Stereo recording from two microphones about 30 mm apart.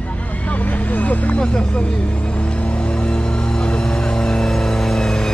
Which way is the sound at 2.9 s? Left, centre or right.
Left.